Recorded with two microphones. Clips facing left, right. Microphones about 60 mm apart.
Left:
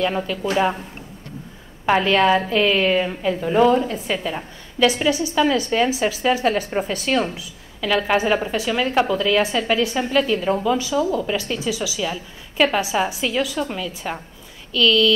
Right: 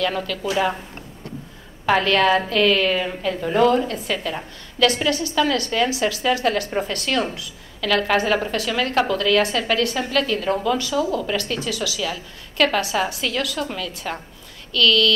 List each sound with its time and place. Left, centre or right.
0.0 s a woman's voice: left
1.9 s a woman's voice: centre